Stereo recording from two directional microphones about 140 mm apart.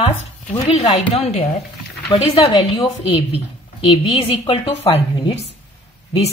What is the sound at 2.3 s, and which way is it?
Speech, 40° left (ahead or behind).